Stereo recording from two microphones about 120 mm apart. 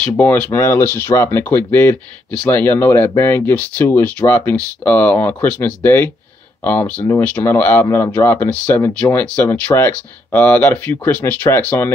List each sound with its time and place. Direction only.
0.0 s speech: 15° left (ahead or behind)